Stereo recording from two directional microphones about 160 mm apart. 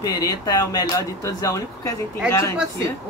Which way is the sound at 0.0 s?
20° left (ahead or behind).